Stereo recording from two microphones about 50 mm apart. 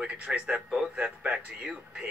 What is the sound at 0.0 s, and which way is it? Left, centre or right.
Speech, right.